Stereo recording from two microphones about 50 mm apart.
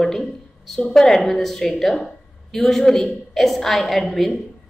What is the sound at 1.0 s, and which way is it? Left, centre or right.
A woman's voice, centre.